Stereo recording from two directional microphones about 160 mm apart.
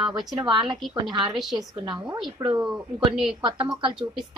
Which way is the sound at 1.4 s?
Centre (ahead or behind).